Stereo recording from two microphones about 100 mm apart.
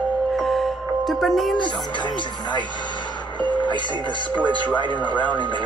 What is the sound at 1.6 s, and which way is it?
Speech, 50° left (ahead or behind).